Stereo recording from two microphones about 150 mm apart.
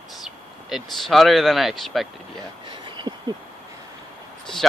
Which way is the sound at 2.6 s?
30° right (ahead or behind).